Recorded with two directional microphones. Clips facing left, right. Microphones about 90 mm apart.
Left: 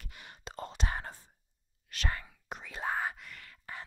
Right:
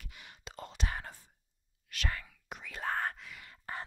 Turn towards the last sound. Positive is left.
turn(degrees=-40)  # may be behind; listen again after turning